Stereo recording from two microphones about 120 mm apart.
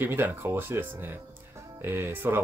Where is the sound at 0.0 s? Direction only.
20° right (ahead or behind).